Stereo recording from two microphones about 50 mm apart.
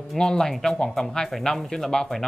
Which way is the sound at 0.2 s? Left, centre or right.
Centre.